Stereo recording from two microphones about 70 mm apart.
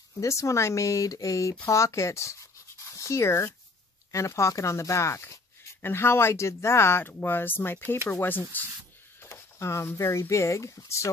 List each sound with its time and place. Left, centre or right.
0.2 s speech: left
9.2 s speech: left